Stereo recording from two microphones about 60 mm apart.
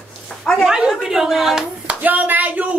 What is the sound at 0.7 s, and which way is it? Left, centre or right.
Speech, centre.